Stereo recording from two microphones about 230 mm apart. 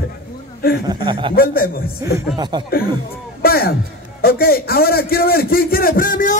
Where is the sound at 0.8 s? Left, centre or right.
Right.